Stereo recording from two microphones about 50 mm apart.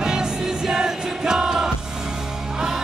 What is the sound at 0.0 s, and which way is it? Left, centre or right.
Music, centre.